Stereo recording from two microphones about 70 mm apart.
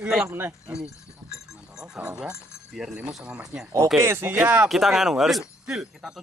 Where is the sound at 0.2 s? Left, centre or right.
Right.